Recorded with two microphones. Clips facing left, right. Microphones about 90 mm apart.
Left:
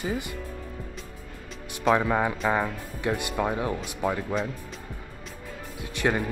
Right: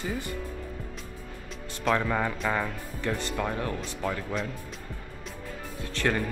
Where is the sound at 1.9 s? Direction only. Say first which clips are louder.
Left 4 dB; 15° left (ahead or behind).